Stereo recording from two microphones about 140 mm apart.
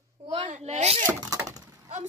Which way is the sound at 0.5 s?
55° right (ahead or behind).